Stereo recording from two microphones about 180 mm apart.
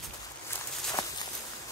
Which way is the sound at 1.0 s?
25° left (ahead or behind).